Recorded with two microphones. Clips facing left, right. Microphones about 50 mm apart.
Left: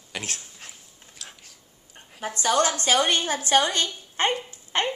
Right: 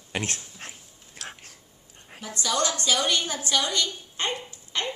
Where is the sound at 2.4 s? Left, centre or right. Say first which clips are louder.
Left 4 dB; left.